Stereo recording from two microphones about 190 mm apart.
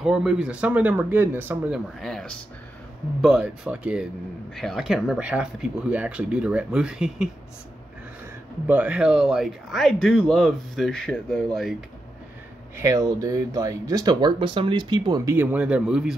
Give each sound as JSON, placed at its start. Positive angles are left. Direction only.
{"t": 0.0, "sound": "speech", "side_deg": -5}
{"t": 8.6, "sound": "speech", "side_deg": -10}
{"t": 12.7, "sound": "speech", "side_deg": -15}